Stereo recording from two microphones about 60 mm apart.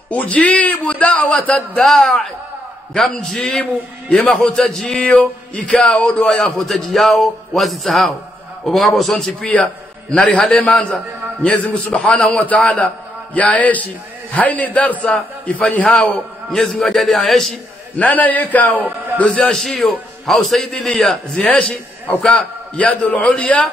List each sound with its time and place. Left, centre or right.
0.1 s a man's voice: left
1.8 s speech: centre
3.0 s a sound: centre
5.7 s speech: centre
9.4 s a man's voice: centre
12.2 s a sound: centre
12.4 s a man's voice: left
16.1 s a man's voice: centre
17.9 s a man's voice: left
18.8 s a man's voice: right
19.1 s a man's voice: left
19.5 s speech: centre
21.4 s a man's voice: centre